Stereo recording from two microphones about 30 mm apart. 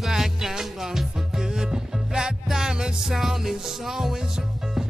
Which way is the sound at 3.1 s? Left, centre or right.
Centre.